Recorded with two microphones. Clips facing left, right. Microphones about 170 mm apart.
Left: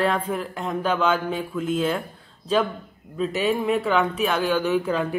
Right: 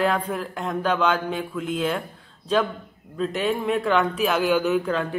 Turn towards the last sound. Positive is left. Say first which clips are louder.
# even
turn(degrees=5)  # may be behind; listen again after turning